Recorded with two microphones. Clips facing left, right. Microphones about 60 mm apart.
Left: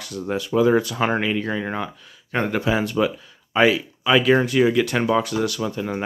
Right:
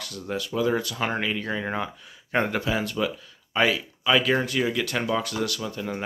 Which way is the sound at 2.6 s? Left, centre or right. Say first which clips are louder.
Left 5 dB; centre.